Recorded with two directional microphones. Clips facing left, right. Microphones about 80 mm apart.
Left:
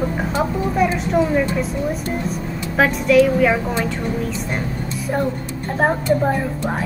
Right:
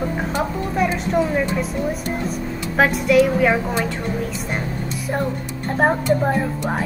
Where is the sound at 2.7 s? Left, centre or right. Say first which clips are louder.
Left 1 dB; centre.